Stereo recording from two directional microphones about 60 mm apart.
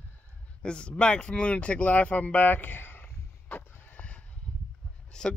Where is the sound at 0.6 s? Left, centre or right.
Centre.